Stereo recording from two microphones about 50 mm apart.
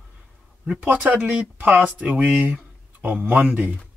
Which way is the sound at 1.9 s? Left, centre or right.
Right.